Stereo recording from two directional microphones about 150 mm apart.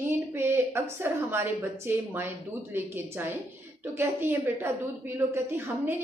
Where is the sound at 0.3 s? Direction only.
15° right (ahead or behind).